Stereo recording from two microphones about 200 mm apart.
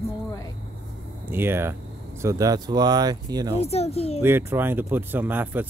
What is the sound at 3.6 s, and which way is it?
Speech, 30° left (ahead or behind).